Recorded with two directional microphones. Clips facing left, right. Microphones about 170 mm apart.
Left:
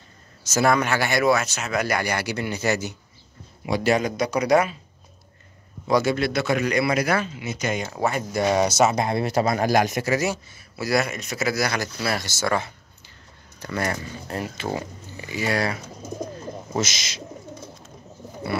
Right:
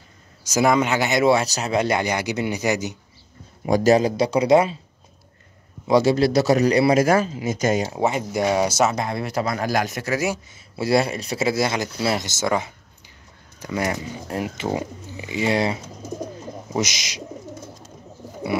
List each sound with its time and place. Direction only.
0.4 s speech: 15° right (ahead or behind)
3.6 s speech: 40° right (ahead or behind); by 4.7 s 25° right (ahead or behind)
5.9 s speech: 30° right (ahead or behind)
7.9 s speech: 20° right (ahead or behind); by 8.9 s 5° right (ahead or behind)
8.9 s speech: 25° left (ahead or behind)
10.2 s speech: 15° right (ahead or behind)
10.8 s speech: 30° right (ahead or behind)
14.2 s speech: 10° right (ahead or behind)